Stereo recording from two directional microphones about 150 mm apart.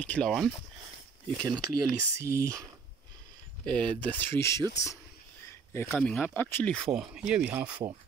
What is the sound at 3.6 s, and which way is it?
Speech, 5° left (ahead or behind).